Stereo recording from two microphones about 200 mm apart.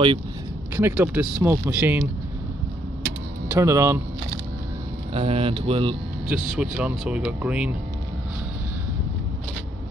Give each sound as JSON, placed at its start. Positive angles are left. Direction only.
{"t": 0.7, "sound": "speech", "side_deg": -10}
{"t": 3.4, "sound": "speech", "side_deg": -15}
{"t": 5.1, "sound": "speech", "side_deg": -30}
{"t": 6.2, "sound": "speech", "side_deg": -5}